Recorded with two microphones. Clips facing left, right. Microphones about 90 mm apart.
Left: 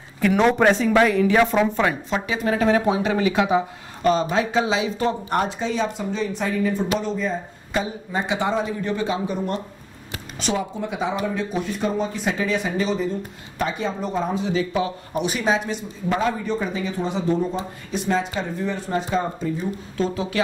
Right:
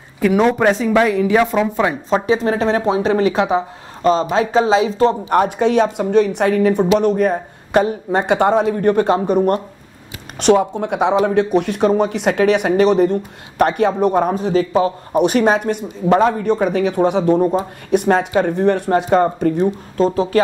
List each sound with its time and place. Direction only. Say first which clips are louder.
0.2 s speech: right 3 dB; 5° right (ahead or behind)
2.0 s speech: right 7 dB; 35° right (ahead or behind)
5.3 s speech: right 9 dB; 65° right (ahead or behind)
14.3 s a man's voice: right 7 dB; 45° right (ahead or behind)
15.1 s speech: right 8 dB; 60° right (ahead or behind)
20.0 s speech: right 8 dB; 40° right (ahead or behind)